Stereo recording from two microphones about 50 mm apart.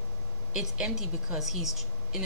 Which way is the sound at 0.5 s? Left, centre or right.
Centre.